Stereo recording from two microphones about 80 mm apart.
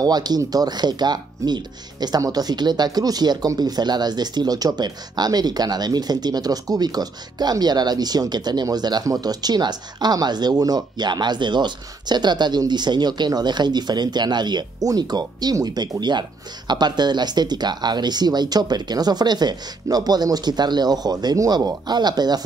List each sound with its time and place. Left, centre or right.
0.0 s speech: right
9.0 s speech: right